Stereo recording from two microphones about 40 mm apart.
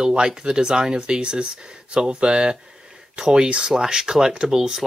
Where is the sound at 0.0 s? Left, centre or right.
Right.